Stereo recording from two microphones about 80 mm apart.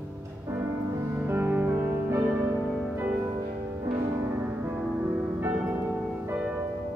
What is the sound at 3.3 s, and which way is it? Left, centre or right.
Music, right.